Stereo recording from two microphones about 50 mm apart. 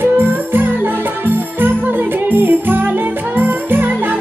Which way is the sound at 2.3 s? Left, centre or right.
Right.